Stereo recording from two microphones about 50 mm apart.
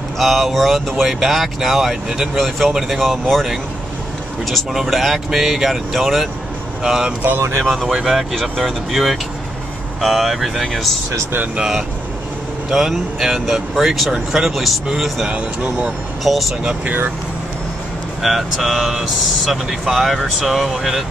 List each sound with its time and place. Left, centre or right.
0.2 s speech: centre
4.7 s speech: centre
6.8 s speech: centre
7.2 s speech: right
7.6 s speech: centre
11.5 s speech: centre
18.2 s speech: centre